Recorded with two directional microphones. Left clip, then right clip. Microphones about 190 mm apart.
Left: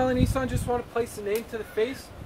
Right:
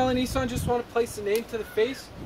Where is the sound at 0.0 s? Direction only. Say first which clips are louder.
Even; 10° right (ahead or behind).